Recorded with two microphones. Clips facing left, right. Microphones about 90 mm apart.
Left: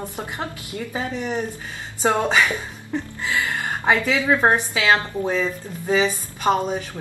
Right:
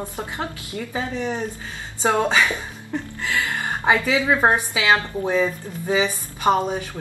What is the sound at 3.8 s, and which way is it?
A woman's voice, 10° right (ahead or behind).